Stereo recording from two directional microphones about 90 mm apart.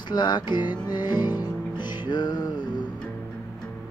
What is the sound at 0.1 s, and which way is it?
Music, 55° left (ahead or behind).